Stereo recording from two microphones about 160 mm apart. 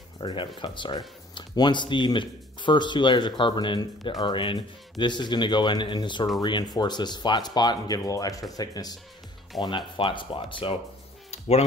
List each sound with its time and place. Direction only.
0.2 s speech: 30° left (ahead or behind)
11.2 s music: 40° left (ahead or behind)